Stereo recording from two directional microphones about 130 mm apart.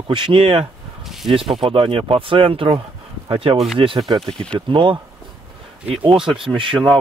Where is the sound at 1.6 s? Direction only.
45° right (ahead or behind).